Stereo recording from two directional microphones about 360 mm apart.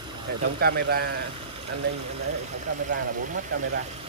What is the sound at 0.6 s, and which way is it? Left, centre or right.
Speech, right.